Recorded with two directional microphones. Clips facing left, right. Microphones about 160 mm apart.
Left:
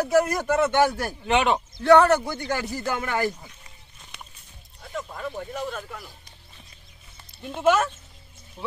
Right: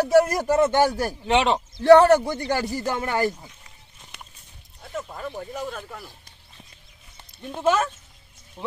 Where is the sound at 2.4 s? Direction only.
35° right (ahead or behind).